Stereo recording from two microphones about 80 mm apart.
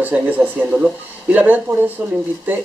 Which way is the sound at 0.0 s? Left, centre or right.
Centre.